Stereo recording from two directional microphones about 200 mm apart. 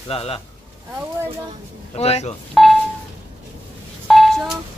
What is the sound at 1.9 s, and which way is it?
Speech, 30° left (ahead or behind).